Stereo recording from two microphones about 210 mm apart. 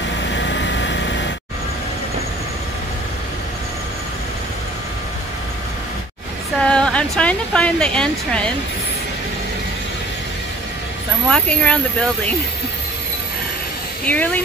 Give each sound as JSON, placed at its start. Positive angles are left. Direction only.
{"t": 0.3, "sound": "vehicle", "side_deg": 55}
{"t": 6.6, "sound": "speech", "side_deg": 5}
{"t": 11.2, "sound": "speech", "side_deg": 5}
{"t": 14.0, "sound": "speech", "side_deg": 5}